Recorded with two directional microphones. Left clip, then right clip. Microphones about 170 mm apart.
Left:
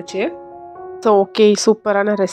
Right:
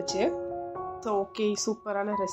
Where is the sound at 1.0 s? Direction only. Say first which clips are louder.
Left 17 dB; 60° left (ahead or behind).